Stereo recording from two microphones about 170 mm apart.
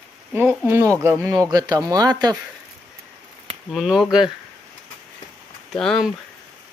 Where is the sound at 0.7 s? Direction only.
15° right (ahead or behind).